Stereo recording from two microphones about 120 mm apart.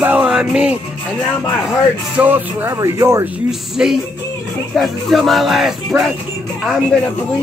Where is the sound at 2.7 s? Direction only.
25° right (ahead or behind).